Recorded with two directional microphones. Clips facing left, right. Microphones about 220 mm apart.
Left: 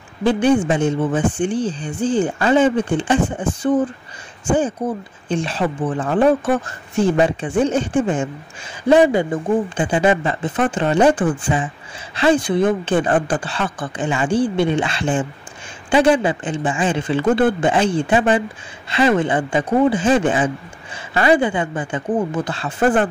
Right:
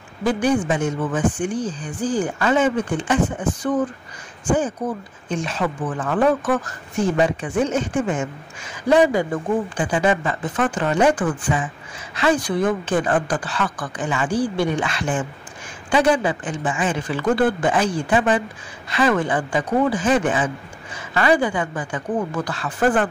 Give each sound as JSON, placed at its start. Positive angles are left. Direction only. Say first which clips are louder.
{"t": 0.2, "sound": "speech", "louder": "left 4 dB", "side_deg": 30}